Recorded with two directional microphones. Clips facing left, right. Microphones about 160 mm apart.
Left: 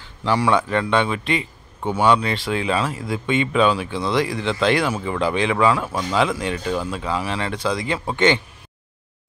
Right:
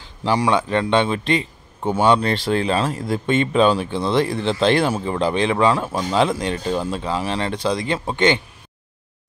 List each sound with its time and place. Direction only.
0.2 s speech: 20° right (ahead or behind)